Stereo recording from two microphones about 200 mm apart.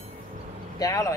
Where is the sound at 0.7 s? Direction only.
15° left (ahead or behind).